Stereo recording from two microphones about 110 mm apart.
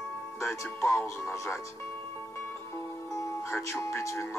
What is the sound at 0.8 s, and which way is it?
Speech, 25° left (ahead or behind).